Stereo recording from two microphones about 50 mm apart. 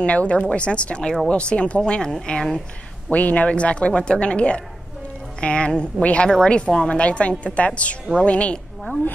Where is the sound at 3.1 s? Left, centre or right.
Left.